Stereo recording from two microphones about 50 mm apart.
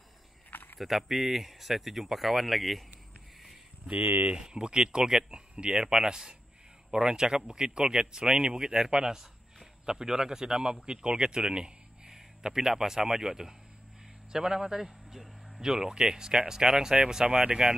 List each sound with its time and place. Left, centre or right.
0.5 s a sound: left
0.7 s speech: centre
3.9 s speech: right
4.4 s speech: centre